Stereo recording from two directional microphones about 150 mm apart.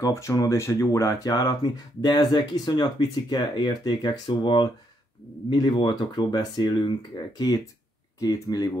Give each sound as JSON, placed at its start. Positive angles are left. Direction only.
{"t": 0.0, "sound": "speech", "side_deg": 20}